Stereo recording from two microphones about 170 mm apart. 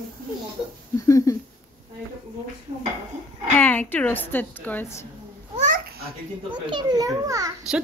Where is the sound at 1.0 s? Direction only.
20° left (ahead or behind).